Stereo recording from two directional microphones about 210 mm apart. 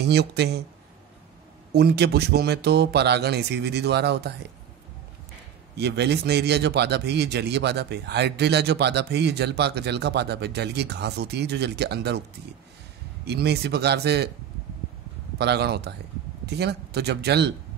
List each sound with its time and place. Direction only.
0.0 s a man's voice: 50° right (ahead or behind)
1.7 s a man's voice: 50° right (ahead or behind)
5.8 s a man's voice: 55° right (ahead or behind)
13.2 s a man's voice: 50° right (ahead or behind)
15.3 s a man's voice: 50° right (ahead or behind)